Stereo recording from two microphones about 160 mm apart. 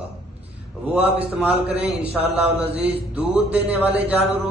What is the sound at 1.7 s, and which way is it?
A man's voice, 40° right (ahead or behind).